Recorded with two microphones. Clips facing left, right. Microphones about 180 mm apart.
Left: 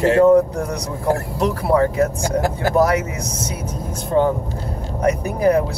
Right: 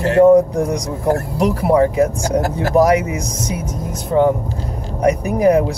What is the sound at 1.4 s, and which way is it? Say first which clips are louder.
Speech: right 3 dB; 15° right (ahead or behind).